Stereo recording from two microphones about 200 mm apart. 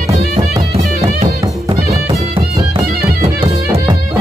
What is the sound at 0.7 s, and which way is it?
Music, 30° right (ahead or behind).